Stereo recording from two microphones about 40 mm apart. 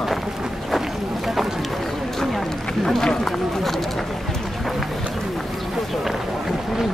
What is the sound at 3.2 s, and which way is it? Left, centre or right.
Speech, centre.